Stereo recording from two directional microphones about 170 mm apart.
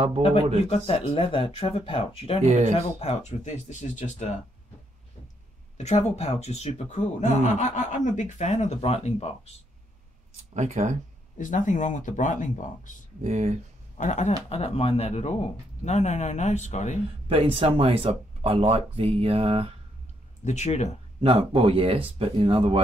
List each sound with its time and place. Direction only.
0.7 s speech: 35° left (ahead or behind)
2.4 s speech: 40° right (ahead or behind)
2.7 s speech: 35° left (ahead or behind)
5.8 s speech: 40° left (ahead or behind)
10.3 s speech: 40° right (ahead or behind)
11.3 s speech: 50° left (ahead or behind)
13.2 s speech: 40° right (ahead or behind)
13.9 s speech: 45° left (ahead or behind)
17.3 s speech: 30° right (ahead or behind)
20.4 s speech: 40° left (ahead or behind)
21.2 s speech: 35° right (ahead or behind)